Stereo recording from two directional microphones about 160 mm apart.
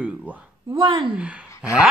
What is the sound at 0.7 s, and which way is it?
Speech, 30° right (ahead or behind).